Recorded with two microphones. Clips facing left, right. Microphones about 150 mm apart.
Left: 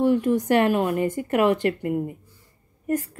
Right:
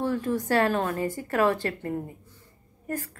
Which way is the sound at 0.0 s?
20° left (ahead or behind).